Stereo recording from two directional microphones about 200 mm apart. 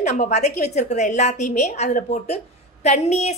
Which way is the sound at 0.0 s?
35° left (ahead or behind).